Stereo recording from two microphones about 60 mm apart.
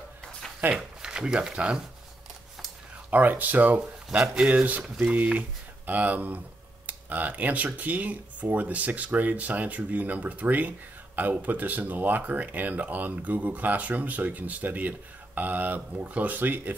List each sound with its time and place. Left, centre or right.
0.6 s speech: right
1.0 s speech: centre
3.1 s speech: right
4.8 s speech: centre
5.1 s speech: right